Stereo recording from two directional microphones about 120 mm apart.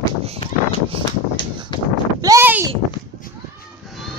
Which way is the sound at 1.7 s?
40° left (ahead or behind).